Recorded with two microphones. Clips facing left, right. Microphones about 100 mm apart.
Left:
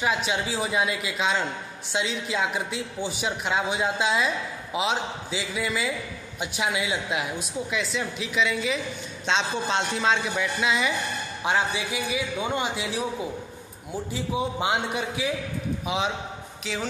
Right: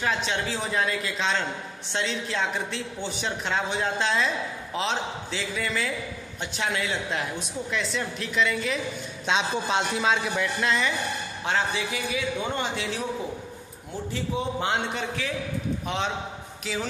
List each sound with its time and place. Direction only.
0.0 s a man's voice: 10° left (ahead or behind)
11.4 s speech: 15° left (ahead or behind)
14.1 s a man's voice: 15° left (ahead or behind)